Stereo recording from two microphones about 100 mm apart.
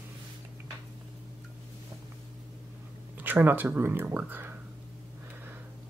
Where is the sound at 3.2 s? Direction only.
20° right (ahead or behind).